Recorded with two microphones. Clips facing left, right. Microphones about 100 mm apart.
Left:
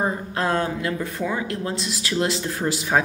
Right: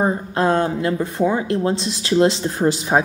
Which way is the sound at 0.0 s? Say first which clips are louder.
Right 5 dB; 25° right (ahead or behind).